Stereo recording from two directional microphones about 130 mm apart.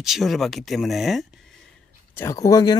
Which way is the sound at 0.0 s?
Centre (ahead or behind).